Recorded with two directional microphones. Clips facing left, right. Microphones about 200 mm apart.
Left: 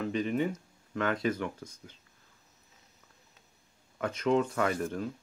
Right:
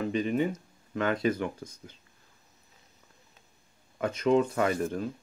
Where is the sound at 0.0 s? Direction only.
10° right (ahead or behind).